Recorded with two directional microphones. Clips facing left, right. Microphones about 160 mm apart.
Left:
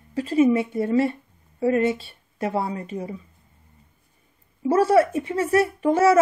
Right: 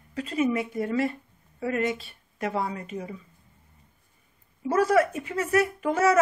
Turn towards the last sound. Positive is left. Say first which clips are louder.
# left 5 dB
turn(degrees=30)  # may be behind; listen again after turning